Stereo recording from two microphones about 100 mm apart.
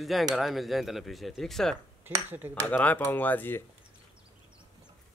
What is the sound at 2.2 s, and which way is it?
Speech, 20° right (ahead or behind).